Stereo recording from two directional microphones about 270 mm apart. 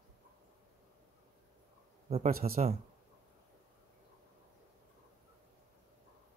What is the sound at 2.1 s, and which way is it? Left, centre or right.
Speech, right.